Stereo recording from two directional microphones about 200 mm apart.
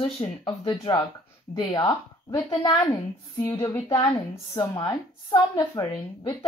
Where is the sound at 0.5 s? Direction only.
25° left (ahead or behind).